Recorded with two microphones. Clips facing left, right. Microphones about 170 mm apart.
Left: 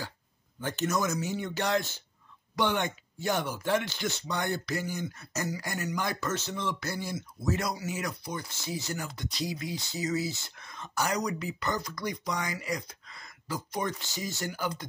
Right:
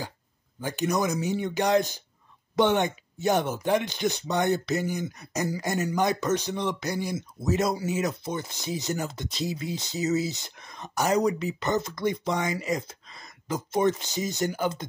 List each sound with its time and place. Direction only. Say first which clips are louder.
0.6 s speech: right 3 dB; 10° right (ahead or behind)